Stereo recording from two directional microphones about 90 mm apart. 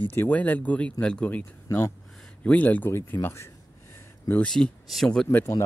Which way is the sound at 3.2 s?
30° left (ahead or behind).